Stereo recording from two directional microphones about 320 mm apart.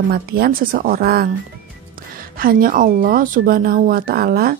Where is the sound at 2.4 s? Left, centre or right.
Right.